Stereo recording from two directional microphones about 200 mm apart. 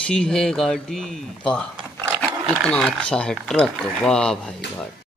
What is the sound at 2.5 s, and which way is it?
Speech, 5° left (ahead or behind).